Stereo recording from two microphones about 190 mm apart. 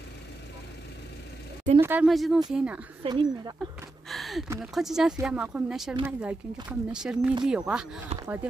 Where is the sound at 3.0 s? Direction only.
25° right (ahead or behind).